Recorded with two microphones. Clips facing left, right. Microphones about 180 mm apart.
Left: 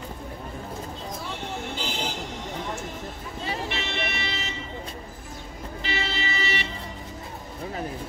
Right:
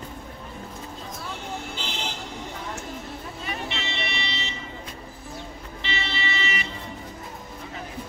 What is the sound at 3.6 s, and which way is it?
Vehicle, 50° left (ahead or behind).